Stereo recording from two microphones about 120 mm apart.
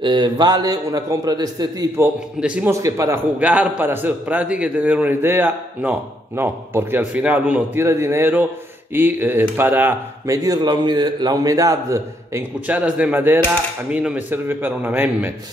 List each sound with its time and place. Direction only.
0.0 s a man's voice: 35° right (ahead or behind)
2.1 s a man's voice: 10° right (ahead or behind)
2.7 s speech: 25° right (ahead or behind)
3.3 s a man's voice: 10° right (ahead or behind)
12.5 s a man's voice: 15° right (ahead or behind)